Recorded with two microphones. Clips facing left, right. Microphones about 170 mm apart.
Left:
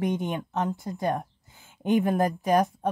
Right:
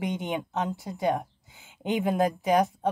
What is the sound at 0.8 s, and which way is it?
Speech, 5° right (ahead or behind).